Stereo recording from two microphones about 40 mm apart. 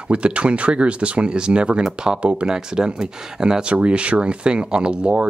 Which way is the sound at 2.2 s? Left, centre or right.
Right.